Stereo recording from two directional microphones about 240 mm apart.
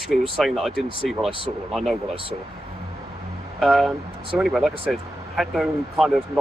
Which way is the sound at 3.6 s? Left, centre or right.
Centre.